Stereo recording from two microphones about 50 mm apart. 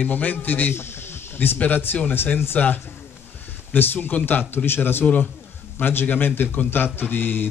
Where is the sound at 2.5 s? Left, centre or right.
Left.